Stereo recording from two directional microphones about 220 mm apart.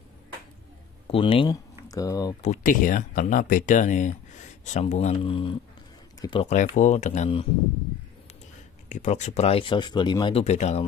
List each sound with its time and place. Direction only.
1.0 s speech: 25° left (ahead or behind)
2.4 s speech: 35° left (ahead or behind)
8.8 s speech: 35° left (ahead or behind)